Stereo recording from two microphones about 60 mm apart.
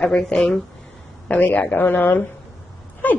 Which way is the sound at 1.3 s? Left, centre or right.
Left.